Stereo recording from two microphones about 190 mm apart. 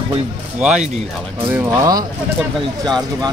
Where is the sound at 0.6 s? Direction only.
5° right (ahead or behind).